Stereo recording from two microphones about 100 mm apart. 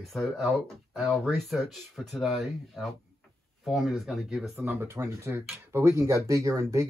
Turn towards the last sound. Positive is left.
turn(degrees=-30)  # may be behind; listen again after turning